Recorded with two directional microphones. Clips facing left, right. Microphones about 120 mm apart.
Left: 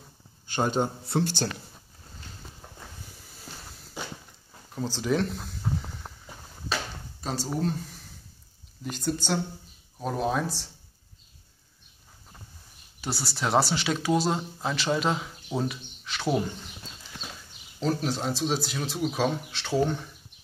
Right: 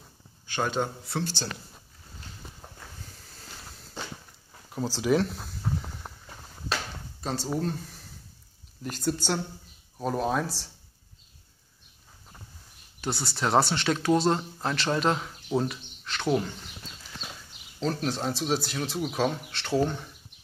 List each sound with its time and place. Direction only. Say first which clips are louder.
1.0 s speech: left 5 dB; 50° left (ahead or behind)
4.0 s a sound: left 1 dB; 10° left (ahead or behind)
4.7 s speech: right 2 dB; 5° right (ahead or behind)
6.2 s a sound: right 2 dB; 5° left (ahead or behind)
8.8 s speech: right 1 dB; 5° right (ahead or behind)
13.0 s speech: right 1 dB; 5° left (ahead or behind)
17.7 s speech: left 1 dB; 5° left (ahead or behind)